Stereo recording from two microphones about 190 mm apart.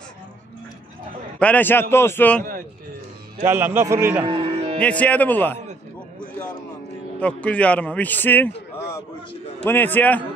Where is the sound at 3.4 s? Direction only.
10° right (ahead or behind).